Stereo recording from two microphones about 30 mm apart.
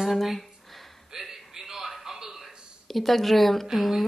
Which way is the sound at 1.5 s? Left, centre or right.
Centre.